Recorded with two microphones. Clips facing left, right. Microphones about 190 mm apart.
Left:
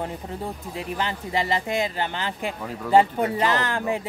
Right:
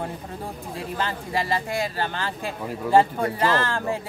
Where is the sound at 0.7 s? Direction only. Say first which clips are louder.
Even; 20° left (ahead or behind).